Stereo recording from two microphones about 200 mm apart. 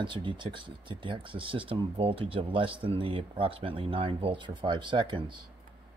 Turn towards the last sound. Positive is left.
turn(degrees=-25)  # may be behind; listen again after turning